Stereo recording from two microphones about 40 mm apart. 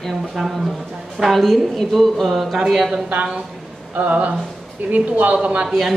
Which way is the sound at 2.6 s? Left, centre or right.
Centre.